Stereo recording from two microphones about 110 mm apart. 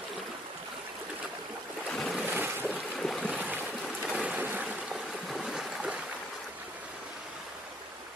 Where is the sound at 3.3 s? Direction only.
15° right (ahead or behind).